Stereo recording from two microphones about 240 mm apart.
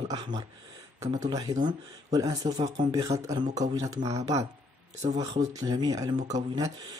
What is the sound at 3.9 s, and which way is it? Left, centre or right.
Speech, right.